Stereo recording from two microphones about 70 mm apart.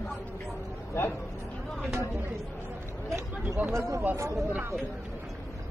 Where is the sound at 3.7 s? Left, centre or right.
Right.